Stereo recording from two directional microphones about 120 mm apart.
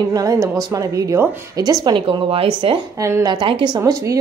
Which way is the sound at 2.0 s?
50° right (ahead or behind).